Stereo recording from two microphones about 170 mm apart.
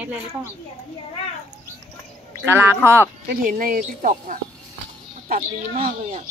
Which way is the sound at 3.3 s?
55° right (ahead or behind).